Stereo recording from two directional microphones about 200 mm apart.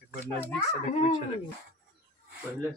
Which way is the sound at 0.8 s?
35° left (ahead or behind).